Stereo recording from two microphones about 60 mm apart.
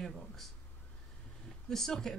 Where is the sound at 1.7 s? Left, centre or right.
Centre.